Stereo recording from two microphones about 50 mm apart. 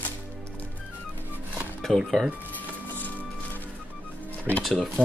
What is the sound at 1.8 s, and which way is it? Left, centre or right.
Speech, centre.